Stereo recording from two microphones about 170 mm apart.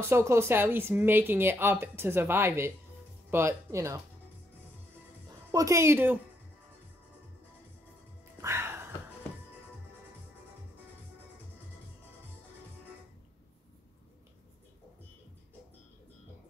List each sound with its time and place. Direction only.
0.0 s speech: 15° right (ahead or behind)
5.5 s speech: 20° right (ahead or behind)
8.4 s music: 15° right (ahead or behind)